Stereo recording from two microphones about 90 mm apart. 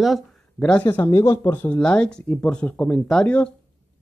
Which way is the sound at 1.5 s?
25° left (ahead or behind).